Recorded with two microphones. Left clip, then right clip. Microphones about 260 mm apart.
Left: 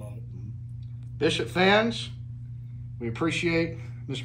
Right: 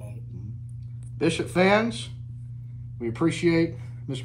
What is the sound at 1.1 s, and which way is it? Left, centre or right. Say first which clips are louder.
Speech: right 1 dB; right.